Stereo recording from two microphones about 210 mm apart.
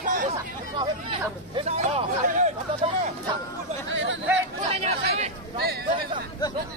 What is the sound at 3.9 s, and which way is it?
Chatter, 60° right (ahead or behind).